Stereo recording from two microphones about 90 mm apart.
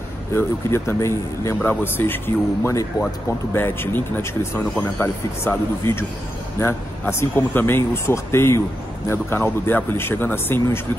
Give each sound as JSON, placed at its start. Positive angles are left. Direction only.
{"t": 0.3, "sound": "speech", "side_deg": 30}